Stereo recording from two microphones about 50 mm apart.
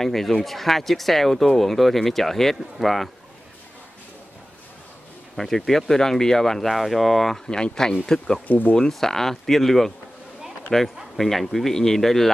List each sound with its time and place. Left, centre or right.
0.0 s speech: centre
5.3 s speech: centre
7.4 s speech: centre
8.5 s speech: left
8.7 s speech: centre